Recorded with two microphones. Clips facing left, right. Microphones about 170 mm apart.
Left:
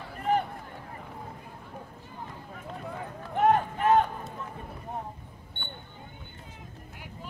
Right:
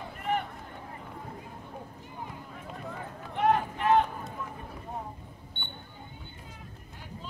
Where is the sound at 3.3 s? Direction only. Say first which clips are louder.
Left 3 dB; 45° left (ahead or behind).